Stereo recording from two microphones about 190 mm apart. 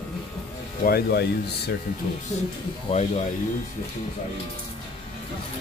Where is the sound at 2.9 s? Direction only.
30° left (ahead or behind).